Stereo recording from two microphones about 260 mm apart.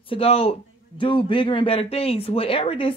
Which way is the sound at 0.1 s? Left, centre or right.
Left.